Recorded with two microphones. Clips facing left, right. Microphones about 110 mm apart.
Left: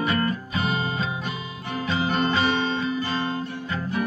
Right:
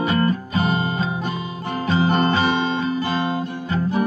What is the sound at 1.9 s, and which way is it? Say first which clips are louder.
Guitar: right 5 dB; 40° right (ahead or behind).